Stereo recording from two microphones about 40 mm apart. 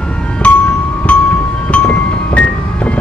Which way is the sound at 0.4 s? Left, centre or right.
Left.